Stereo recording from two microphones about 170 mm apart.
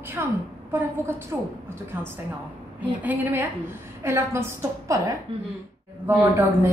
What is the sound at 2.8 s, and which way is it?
A woman's voice, 10° right (ahead or behind).